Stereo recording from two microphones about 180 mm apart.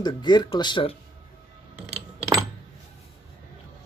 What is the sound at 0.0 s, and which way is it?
Speech, 25° left (ahead or behind).